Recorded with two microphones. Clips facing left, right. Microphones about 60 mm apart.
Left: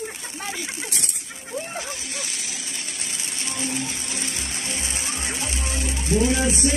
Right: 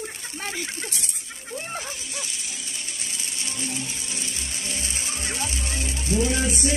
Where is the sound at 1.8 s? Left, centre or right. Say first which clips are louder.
Left 2 dB; left.